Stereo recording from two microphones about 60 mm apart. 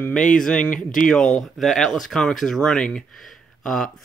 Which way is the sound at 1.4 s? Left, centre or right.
Centre.